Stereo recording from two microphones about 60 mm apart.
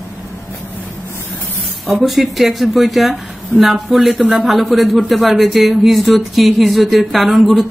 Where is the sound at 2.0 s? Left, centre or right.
Centre.